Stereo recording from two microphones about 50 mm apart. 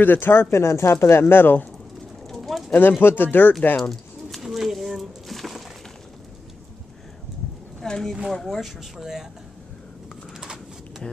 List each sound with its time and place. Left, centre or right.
0.0 s speech: left
0.5 s speech: left
0.9 s speech: left
2.2 s bird: centre
2.7 s speech: left
3.9 s pigeon: centre
7.8 s a woman's voice: centre